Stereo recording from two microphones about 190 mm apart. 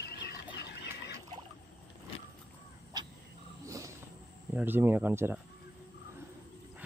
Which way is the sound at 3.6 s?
15° right (ahead or behind).